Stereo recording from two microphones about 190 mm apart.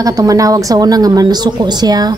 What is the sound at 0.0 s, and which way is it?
Speech, 20° right (ahead or behind).